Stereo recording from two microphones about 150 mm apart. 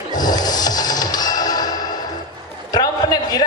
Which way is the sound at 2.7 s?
25° left (ahead or behind).